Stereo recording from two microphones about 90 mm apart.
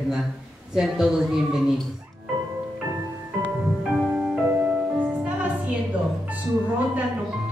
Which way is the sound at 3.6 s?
10° right (ahead or behind).